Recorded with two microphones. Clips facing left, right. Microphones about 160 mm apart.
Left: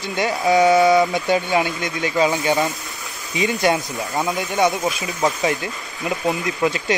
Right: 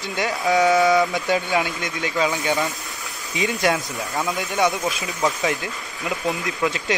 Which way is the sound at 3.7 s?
20° left (ahead or behind).